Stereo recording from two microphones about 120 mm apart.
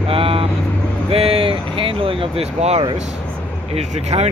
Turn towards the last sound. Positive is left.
turn(degrees=-65)  # may be behind; listen again after turning